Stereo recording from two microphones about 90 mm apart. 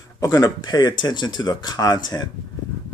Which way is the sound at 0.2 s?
40° left (ahead or behind).